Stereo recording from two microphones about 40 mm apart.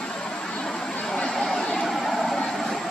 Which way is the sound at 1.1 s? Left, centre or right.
Centre.